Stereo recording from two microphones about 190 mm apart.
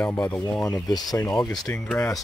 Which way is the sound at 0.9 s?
20° left (ahead or behind).